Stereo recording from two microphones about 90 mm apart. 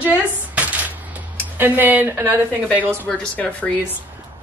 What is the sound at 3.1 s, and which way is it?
Speech, 10° left (ahead or behind).